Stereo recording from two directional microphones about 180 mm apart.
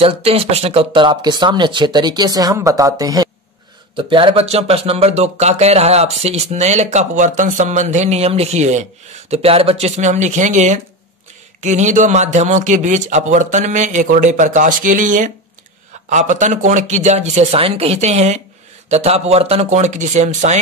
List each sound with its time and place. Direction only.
0.0 s a man's voice: 35° right (ahead or behind)